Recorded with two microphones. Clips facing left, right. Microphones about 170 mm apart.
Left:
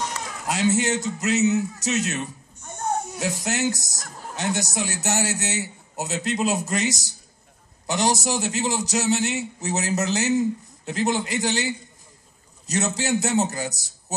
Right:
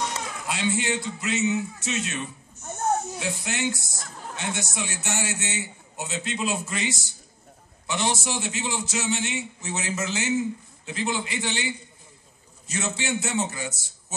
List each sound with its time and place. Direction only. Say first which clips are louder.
0.5 s speech: left 5 dB; 40° left (ahead or behind)